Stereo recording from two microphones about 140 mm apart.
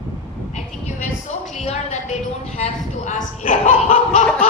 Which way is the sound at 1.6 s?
55° left (ahead or behind).